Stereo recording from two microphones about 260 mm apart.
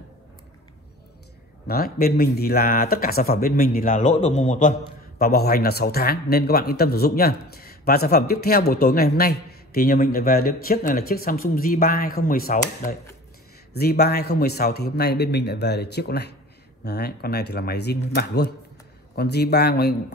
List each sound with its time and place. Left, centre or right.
1.7 s speech: left
13.7 s speech: left